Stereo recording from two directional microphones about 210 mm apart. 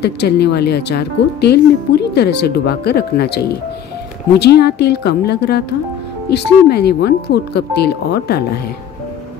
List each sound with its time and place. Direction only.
0.0 s speech: 50° left (ahead or behind)